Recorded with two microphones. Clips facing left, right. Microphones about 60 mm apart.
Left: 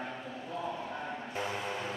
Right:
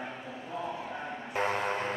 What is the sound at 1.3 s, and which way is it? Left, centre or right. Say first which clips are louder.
Vehicle: right 8 dB; right.